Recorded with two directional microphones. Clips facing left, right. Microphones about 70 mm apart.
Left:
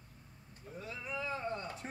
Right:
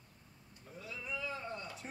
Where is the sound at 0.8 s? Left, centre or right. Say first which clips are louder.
Left 2 dB; left.